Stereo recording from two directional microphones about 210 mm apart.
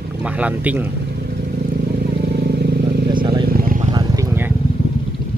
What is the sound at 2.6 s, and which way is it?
Vehicle, 50° right (ahead or behind).